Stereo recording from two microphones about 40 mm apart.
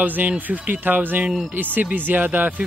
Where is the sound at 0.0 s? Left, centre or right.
Right.